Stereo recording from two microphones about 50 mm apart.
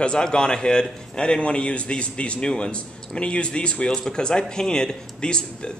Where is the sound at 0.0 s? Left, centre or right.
Centre.